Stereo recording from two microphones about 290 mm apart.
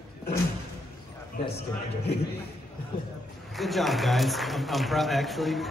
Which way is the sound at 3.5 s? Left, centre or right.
Centre.